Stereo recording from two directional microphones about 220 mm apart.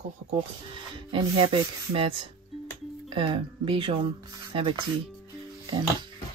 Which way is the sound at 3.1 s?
25° right (ahead or behind).